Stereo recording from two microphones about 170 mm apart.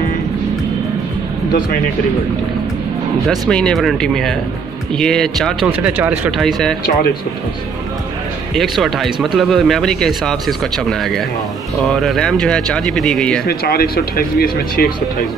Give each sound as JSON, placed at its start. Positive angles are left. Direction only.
{"t": 3.3, "sound": "speech", "side_deg": 5}
{"t": 5.7, "sound": "speech", "side_deg": -10}
{"t": 6.4, "sound": "speech", "side_deg": 5}
{"t": 8.5, "sound": "speech", "side_deg": 0}
{"t": 11.9, "sound": "speech", "side_deg": 0}
{"t": 13.5, "sound": "speech", "side_deg": 65}